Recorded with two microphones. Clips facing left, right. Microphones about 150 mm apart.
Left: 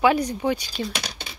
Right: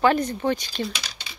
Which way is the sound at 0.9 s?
60° left (ahead or behind).